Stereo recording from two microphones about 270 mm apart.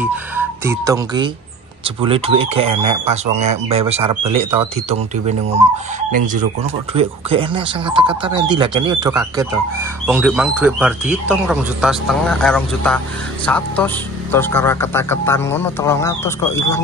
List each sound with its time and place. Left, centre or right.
0.0 s a man's voice: centre